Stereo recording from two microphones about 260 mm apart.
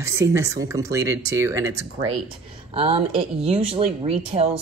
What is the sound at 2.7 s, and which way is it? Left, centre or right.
Speech, right.